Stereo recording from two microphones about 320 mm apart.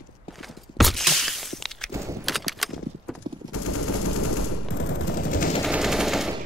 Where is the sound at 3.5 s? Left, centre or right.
Left.